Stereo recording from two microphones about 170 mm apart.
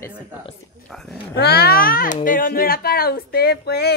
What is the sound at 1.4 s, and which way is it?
Speech, 65° left (ahead or behind).